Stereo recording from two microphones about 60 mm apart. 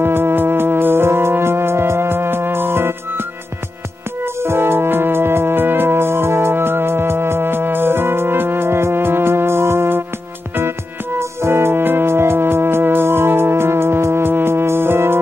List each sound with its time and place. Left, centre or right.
0.0 s music: right
4.4 s music: right
11.1 s music: right